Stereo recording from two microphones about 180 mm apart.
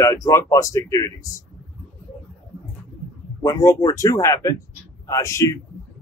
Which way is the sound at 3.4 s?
15° left (ahead or behind).